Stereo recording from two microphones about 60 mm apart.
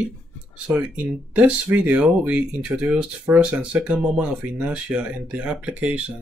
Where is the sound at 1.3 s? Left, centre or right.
Right.